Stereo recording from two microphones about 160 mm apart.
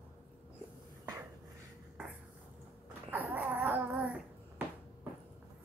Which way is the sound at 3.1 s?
10° right (ahead or behind).